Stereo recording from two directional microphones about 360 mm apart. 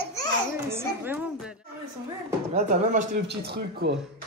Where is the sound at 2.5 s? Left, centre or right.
Right.